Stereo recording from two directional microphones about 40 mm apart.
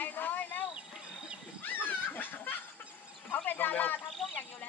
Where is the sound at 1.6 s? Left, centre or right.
Left.